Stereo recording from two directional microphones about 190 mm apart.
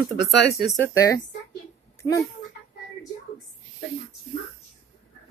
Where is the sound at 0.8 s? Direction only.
15° left (ahead or behind).